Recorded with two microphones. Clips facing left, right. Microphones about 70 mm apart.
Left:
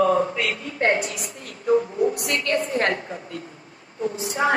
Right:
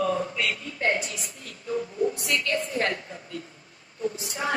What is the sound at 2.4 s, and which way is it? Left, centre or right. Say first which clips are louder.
A woman's voice: left 6 dB; left.